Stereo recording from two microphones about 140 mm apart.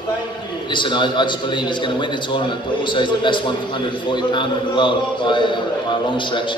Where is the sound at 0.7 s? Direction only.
35° left (ahead or behind).